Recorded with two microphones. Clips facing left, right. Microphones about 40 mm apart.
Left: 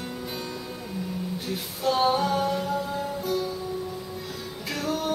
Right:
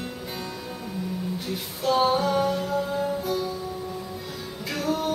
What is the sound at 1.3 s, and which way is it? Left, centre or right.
Music, centre.